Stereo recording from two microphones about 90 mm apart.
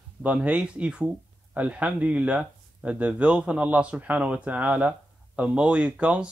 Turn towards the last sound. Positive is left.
turn(degrees=-15)  # may be behind; listen again after turning